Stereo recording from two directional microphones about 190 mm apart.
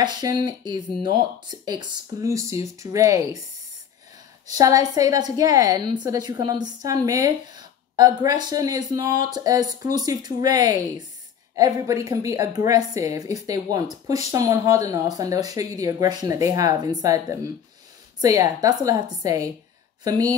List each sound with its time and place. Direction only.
0.0 s a woman's voice: 20° right (ahead or behind)
4.5 s a woman's voice: 20° right (ahead or behind)